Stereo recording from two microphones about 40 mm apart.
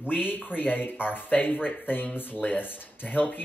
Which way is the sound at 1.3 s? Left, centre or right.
Left.